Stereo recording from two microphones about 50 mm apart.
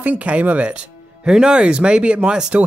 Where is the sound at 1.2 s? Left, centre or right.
Centre.